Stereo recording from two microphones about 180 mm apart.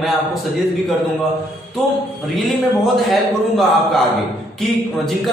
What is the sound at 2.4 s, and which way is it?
Speech, centre (ahead or behind).